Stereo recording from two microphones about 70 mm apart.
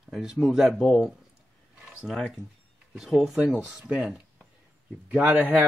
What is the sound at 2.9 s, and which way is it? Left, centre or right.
Speech, centre.